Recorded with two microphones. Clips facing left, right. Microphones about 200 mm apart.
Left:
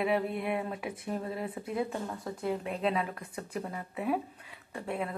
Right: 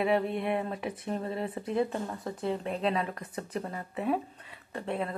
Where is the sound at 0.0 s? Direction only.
5° left (ahead or behind).